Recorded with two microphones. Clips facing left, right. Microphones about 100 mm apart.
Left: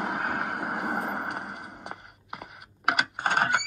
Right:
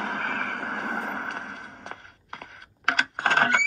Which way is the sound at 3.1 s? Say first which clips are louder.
Right 3 dB; 70° right (ahead or behind).